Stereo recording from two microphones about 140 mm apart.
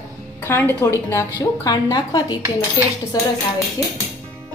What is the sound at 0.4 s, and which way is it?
A woman's voice, 15° left (ahead or behind).